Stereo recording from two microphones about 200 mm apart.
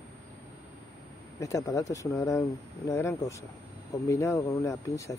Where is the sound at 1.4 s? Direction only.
15° left (ahead or behind).